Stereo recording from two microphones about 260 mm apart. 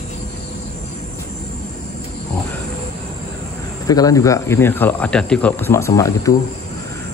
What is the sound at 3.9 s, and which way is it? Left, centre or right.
A man's voice, centre.